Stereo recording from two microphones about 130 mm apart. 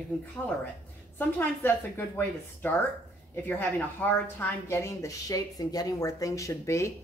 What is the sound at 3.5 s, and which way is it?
Speech, 15° left (ahead or behind).